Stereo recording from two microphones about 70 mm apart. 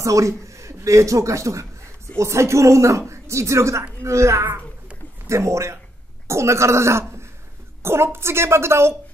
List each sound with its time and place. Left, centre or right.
0.0 s a woman's voice: right